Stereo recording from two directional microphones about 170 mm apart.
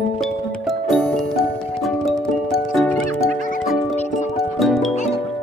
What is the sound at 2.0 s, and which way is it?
Music, centre (ahead or behind).